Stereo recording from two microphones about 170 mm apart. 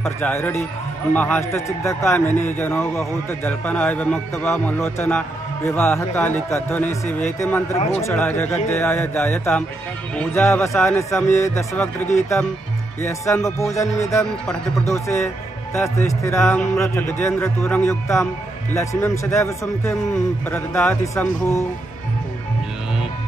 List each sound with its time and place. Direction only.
0.0 s a man's voice: 10° left (ahead or behind)